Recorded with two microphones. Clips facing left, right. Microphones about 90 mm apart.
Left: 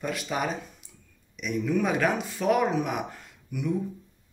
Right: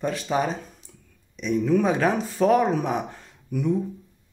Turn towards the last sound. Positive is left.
turn(degrees=-35)  # may be behind; listen again after turning